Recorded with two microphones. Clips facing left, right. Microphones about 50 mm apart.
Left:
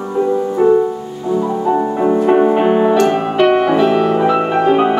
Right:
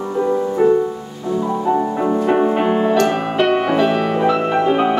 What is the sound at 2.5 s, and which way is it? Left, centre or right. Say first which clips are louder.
Music: left 4 dB; centre.